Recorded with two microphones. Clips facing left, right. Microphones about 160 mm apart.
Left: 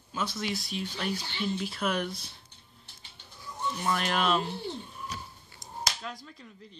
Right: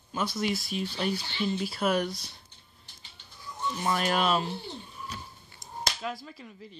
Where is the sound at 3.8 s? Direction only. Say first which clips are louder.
Right 2 dB; 40° right (ahead or behind).